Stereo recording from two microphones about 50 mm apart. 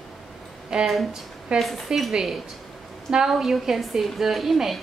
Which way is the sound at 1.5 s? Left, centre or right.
Centre.